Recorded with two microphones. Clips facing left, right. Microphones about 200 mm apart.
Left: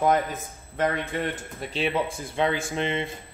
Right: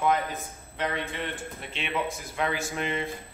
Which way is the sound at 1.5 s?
35° left (ahead or behind).